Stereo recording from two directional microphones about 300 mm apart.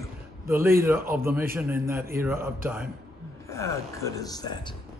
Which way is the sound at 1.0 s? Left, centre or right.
Right.